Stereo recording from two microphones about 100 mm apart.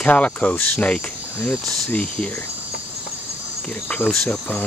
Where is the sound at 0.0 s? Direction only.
15° left (ahead or behind).